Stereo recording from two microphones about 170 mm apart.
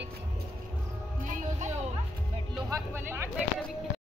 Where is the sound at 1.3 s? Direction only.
45° right (ahead or behind).